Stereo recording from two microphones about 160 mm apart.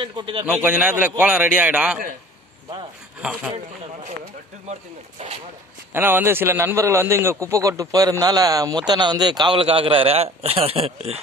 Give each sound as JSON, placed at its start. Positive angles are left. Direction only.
{"t": 0.0, "sound": "a man's voice", "side_deg": -30}
{"t": 0.5, "sound": "a man's voice", "side_deg": -10}
{"t": 3.2, "sound": "a man's voice", "side_deg": -5}
{"t": 4.7, "sound": "speech", "side_deg": -45}
{"t": 5.9, "sound": "a man's voice", "side_deg": -15}